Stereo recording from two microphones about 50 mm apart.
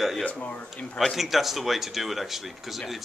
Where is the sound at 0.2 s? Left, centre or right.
Left.